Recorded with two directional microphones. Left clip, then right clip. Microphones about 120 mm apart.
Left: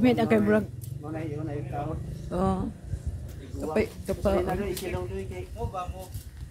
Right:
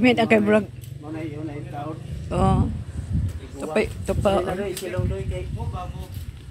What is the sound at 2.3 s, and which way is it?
Speech, 15° right (ahead or behind).